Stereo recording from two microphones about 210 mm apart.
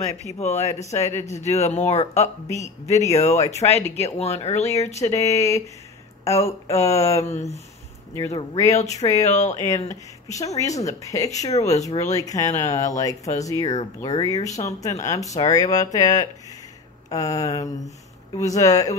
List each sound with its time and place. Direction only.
0.2 s speech: 30° left (ahead or behind)
6.2 s speech: 15° left (ahead or behind)
8.7 s speech: 30° left (ahead or behind)
10.2 s speech: 15° left (ahead or behind)